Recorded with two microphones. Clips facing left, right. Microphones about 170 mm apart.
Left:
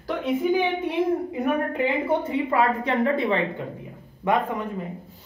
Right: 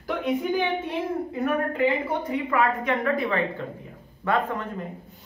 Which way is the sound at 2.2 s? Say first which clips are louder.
Left 2 dB; 30° left (ahead or behind).